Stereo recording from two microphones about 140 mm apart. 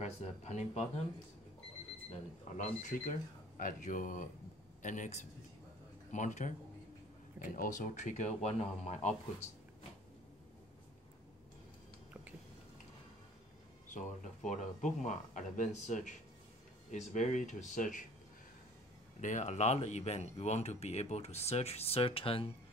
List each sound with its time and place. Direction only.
0.0 s speech: 50° left (ahead or behind)
2.5 s speech: 70° left (ahead or behind)
7.4 s speech: 80° left; by 9.1 s 50° left (ahead or behind)
13.8 s speech: 65° left (ahead or behind)
19.2 s speech: 60° left (ahead or behind); by 22.5 s 40° left (ahead or behind)